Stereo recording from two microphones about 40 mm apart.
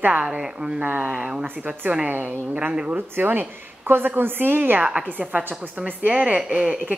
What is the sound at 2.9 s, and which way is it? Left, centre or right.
A woman's voice, right.